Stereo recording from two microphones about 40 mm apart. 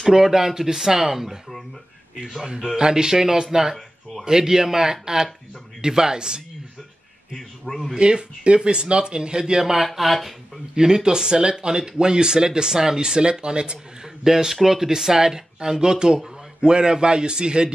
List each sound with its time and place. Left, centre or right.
0.1 s speech: centre
2.6 s speech: centre
7.3 s a man's voice: centre
7.9 s a man's voice: right; by 10.3 s centre
10.8 s speech: centre
14.2 s speech: centre